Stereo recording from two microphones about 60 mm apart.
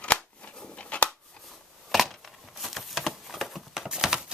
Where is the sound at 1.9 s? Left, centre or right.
Centre.